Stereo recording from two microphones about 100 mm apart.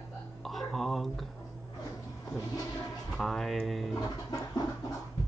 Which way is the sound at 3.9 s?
35° left (ahead or behind).